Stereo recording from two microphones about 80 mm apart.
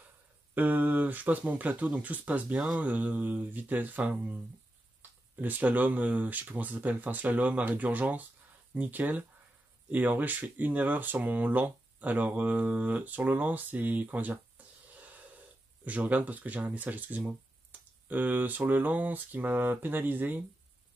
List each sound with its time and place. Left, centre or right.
0.6 s speech: right
15.0 s a sound: centre
17.3 s speech: right